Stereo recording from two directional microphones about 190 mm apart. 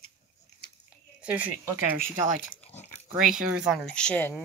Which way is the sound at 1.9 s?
45° right (ahead or behind).